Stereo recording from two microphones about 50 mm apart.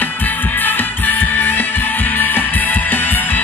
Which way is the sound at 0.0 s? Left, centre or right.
Left.